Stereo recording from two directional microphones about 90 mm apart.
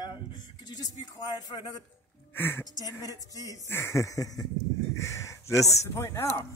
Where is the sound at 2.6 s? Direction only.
45° left (ahead or behind).